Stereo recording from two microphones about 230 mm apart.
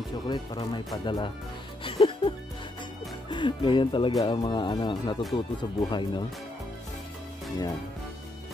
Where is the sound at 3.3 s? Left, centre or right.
Left.